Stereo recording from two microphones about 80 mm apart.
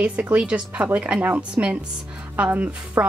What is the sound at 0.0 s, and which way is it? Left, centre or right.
A woman's voice, centre.